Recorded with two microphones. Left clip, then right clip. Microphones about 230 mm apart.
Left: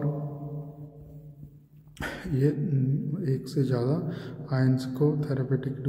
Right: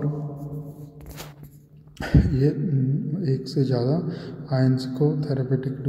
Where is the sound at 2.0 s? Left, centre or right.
Centre.